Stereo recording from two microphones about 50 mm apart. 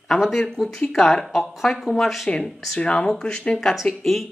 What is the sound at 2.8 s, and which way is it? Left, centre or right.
Speech, left.